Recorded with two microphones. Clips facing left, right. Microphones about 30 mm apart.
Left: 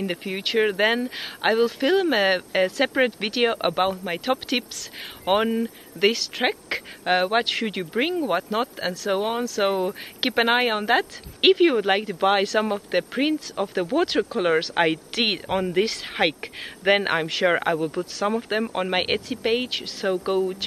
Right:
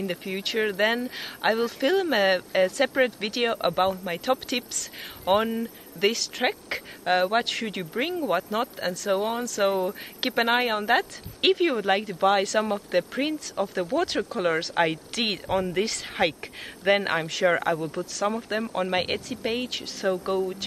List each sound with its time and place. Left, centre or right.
0.0 s speech: centre